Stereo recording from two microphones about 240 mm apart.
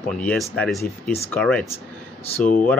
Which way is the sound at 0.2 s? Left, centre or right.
Centre.